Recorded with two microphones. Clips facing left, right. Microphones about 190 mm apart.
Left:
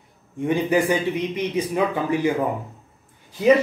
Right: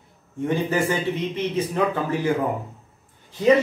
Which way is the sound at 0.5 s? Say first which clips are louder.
Left 3 dB; 15° left (ahead or behind).